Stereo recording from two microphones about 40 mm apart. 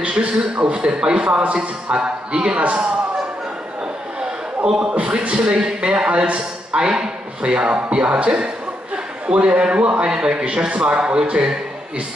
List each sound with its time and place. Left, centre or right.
0.0 s a man's voice: right
4.7 s a man's voice: right
6.7 s a man's voice: centre
7.5 s a man's voice: right
10.0 s a man's voice: centre